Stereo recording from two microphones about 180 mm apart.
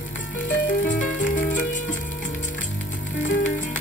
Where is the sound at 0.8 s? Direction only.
45° left (ahead or behind).